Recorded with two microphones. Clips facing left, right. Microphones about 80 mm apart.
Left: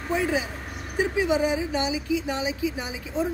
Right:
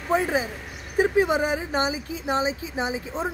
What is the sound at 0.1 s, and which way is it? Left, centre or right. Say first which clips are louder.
Speech: right 2 dB; right.